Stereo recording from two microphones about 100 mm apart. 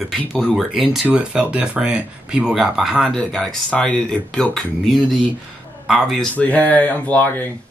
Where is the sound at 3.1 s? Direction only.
5° left (ahead or behind).